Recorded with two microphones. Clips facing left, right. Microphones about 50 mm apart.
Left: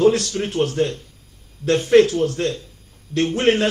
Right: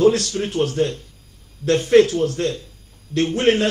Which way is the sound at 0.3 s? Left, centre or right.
Left.